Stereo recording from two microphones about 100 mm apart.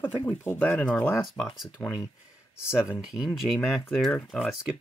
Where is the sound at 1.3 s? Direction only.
Centre (ahead or behind).